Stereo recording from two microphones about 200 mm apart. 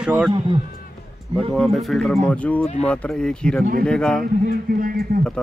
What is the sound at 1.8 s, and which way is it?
Speech, centre (ahead or behind).